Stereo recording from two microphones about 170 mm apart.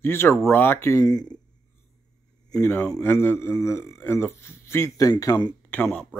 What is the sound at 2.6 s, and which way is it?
Speech, 15° left (ahead or behind).